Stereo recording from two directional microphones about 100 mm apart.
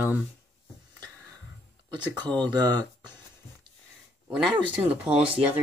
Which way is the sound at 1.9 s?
45° right (ahead or behind).